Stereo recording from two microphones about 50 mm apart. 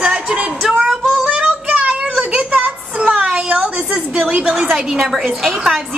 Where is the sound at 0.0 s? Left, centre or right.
Centre.